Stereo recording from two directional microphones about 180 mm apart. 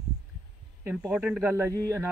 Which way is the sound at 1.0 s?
5° right (ahead or behind).